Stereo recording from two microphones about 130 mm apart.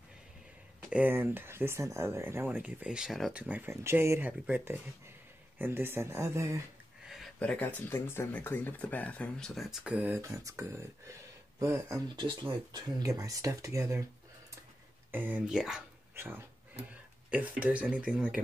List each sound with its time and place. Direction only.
0.8 s speech: 10° right (ahead or behind)
7.3 s speech: 10° left (ahead or behind); by 10.2 s 10° right (ahead or behind)
10.2 s speech: 25° right (ahead or behind)
12.1 s speech: 35° right (ahead or behind)
15.0 s speech: 15° right (ahead or behind)
16.2 s speech: 20° right (ahead or behind)